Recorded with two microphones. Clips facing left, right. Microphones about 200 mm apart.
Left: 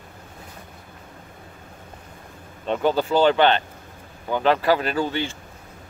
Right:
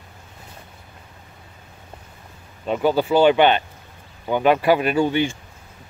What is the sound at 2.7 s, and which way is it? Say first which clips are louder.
Speech: right 2 dB; 10° right (ahead or behind).